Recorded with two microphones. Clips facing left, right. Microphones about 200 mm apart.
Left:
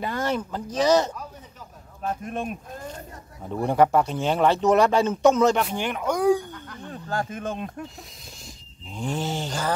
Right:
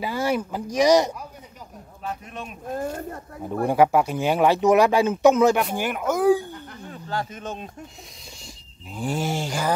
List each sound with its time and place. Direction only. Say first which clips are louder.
0.0 s speech: right 2 dB; 10° right (ahead or behind)
2.0 s speech: left 5 dB; 50° left (ahead or behind)
2.7 s speech: right 9 dB; 50° right (ahead or behind)
3.6 s speech: right 1 dB; 10° right (ahead or behind)
6.9 s speech: left 1 dB; 45° left (ahead or behind)
8.9 s speech: right 2 dB; 10° right (ahead or behind)